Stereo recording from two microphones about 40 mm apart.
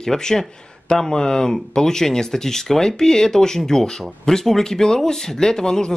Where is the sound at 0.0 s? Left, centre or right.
Centre.